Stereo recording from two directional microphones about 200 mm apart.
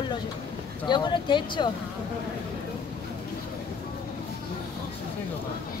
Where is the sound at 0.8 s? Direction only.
20° left (ahead or behind).